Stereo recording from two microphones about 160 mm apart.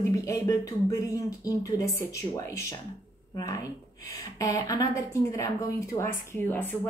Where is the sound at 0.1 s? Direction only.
20° left (ahead or behind).